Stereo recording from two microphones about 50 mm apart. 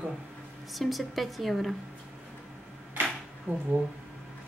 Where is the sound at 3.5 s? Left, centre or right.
Right.